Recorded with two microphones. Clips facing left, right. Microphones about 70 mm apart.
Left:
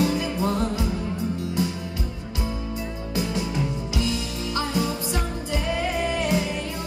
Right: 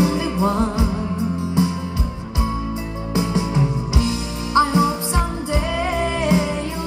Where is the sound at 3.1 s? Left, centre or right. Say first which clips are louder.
Right 6 dB; right.